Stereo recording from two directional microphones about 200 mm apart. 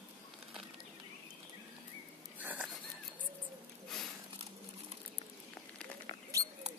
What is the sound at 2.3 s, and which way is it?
Wheeze, 10° right (ahead or behind).